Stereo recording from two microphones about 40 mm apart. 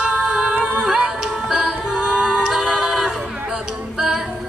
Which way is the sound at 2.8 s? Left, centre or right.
Centre.